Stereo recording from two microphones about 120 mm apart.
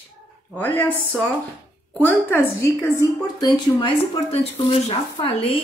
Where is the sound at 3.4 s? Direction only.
40° left (ahead or behind).